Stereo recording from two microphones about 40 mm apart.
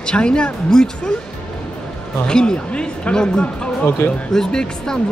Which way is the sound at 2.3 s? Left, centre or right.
Left.